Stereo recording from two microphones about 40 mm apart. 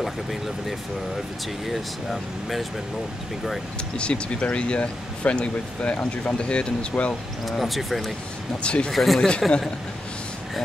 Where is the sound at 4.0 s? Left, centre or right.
Left.